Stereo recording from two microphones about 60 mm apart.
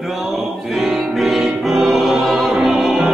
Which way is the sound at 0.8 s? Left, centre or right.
Centre.